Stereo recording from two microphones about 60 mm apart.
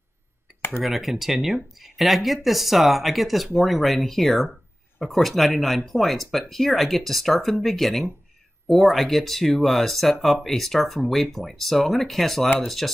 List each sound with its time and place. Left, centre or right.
0.8 s speech: centre